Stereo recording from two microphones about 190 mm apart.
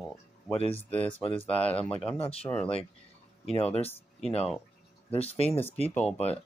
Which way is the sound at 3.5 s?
30° left (ahead or behind).